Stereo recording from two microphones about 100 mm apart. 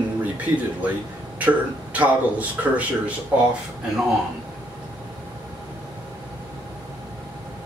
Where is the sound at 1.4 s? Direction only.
15° right (ahead or behind).